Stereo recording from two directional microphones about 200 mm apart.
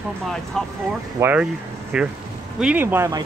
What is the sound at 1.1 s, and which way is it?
Speech, 10° right (ahead or behind).